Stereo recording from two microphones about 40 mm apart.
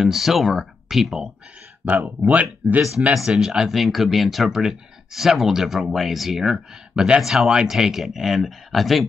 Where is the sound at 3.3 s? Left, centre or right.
Centre.